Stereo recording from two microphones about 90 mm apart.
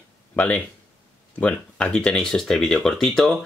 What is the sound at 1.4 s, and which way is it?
Speech, 10° left (ahead or behind).